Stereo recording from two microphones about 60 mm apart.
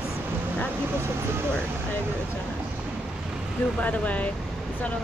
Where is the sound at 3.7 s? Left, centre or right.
Left.